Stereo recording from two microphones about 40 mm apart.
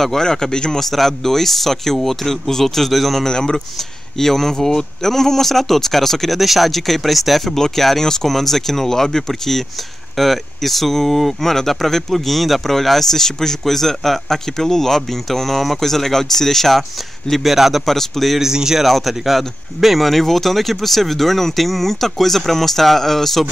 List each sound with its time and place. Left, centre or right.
0.0 s speech: centre
0.7 s speech: centre
3.3 s speech: centre
17.4 s speech: centre
17.8 s speech: centre
18.4 s speech: centre
18.9 s speech: centre